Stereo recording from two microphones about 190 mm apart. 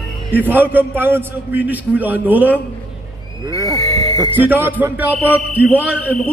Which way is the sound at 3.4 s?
20° right (ahead or behind).